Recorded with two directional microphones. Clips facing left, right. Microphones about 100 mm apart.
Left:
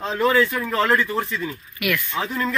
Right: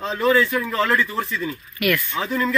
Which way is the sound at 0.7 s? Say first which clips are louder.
Left 2 dB; 35° left (ahead or behind).